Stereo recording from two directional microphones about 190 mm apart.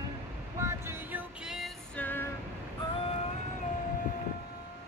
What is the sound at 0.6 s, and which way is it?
Music, 15° right (ahead or behind).